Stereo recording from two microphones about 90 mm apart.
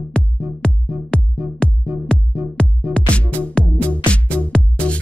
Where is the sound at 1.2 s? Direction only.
20° right (ahead or behind).